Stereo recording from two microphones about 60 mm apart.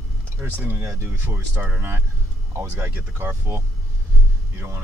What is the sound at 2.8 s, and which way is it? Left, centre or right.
Speech, right.